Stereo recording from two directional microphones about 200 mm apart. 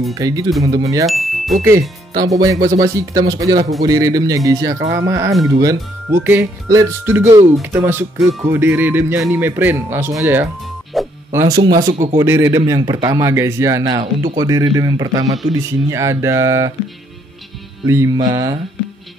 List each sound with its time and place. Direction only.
0.1 s speech: 15° right (ahead or behind)
1.0 s speech: centre (ahead or behind)
2.2 s speech: 15° right (ahead or behind)
10.9 s music: centre (ahead or behind)
11.3 s speech: 20° right (ahead or behind)
17.8 s speech: 15° right (ahead or behind)